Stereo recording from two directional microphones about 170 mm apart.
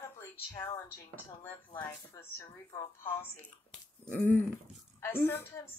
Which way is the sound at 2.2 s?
20° left (ahead or behind).